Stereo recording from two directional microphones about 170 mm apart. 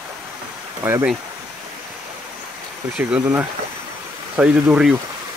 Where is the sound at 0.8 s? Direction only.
10° right (ahead or behind).